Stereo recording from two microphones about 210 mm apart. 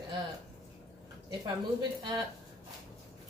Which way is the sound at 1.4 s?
20° right (ahead or behind).